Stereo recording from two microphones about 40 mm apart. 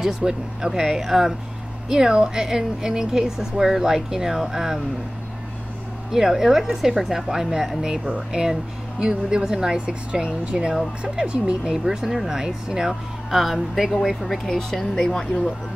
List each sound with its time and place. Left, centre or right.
0.0 s speech: centre
6.1 s speech: centre
13.9 s speech: centre